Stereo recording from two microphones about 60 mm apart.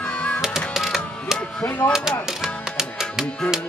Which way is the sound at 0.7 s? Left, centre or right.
Centre.